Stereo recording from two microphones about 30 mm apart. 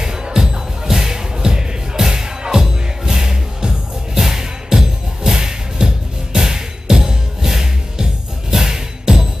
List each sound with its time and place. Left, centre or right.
0.0 s music: right